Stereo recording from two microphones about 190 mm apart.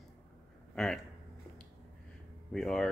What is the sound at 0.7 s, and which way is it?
Speech, centre (ahead or behind).